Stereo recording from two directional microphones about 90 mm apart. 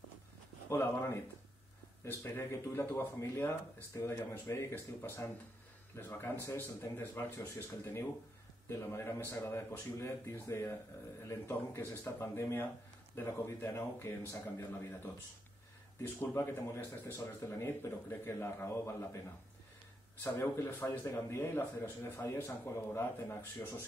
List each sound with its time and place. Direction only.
0.7 s a man's voice: 30° left (ahead or behind)
16.0 s speech: 25° left (ahead or behind)